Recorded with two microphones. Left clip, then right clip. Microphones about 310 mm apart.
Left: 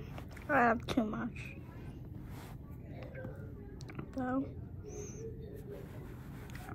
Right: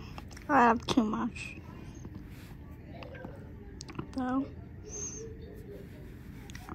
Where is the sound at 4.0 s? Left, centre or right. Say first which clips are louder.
Right 4 dB; centre.